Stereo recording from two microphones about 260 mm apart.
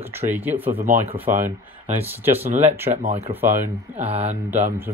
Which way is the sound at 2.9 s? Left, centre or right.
Right.